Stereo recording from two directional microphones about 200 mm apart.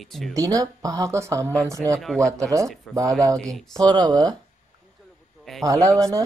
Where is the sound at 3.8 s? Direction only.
20° right (ahead or behind).